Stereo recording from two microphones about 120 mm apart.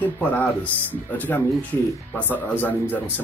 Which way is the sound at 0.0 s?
15° left (ahead or behind).